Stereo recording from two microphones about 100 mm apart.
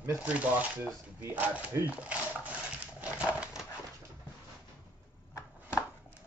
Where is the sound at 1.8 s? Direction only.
15° right (ahead or behind).